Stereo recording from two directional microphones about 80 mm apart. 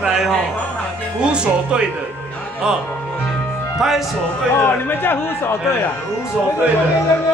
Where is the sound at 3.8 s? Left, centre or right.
Centre.